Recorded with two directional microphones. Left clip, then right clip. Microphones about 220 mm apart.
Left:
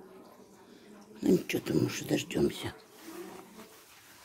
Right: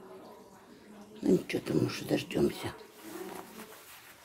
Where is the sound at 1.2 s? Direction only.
20° left (ahead or behind).